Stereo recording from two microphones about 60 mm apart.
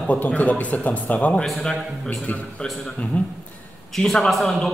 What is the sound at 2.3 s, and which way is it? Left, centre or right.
Speech, left.